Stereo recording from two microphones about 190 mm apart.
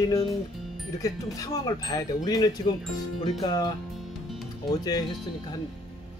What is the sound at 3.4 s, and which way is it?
Speech, 20° left (ahead or behind).